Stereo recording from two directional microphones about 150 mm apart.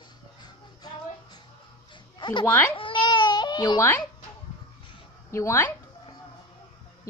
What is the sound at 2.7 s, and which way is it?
Baby cry, 35° left (ahead or behind).